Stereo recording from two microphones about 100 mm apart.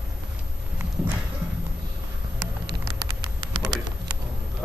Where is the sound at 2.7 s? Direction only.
55° right (ahead or behind).